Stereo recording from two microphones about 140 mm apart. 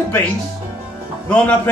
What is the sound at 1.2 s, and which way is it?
Speech, 10° left (ahead or behind).